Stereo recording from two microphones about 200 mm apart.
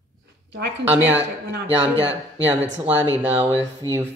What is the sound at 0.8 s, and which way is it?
Speech, 10° right (ahead or behind).